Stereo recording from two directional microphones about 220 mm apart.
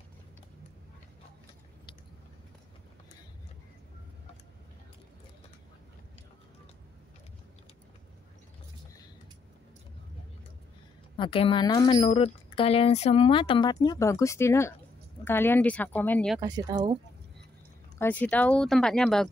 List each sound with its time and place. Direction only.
11.1 s a woman's voice: 25° left (ahead or behind); by 16.3 s 5° left (ahead or behind)
16.3 s speech: 15° right (ahead or behind)
17.9 s speech: 10° left (ahead or behind)